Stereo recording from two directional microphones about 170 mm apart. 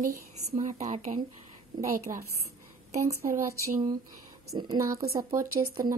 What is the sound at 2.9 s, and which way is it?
Speech, 40° right (ahead or behind).